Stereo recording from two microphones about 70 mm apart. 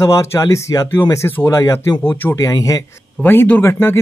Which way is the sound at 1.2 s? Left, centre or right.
Left.